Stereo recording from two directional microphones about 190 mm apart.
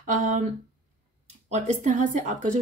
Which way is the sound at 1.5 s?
40° right (ahead or behind).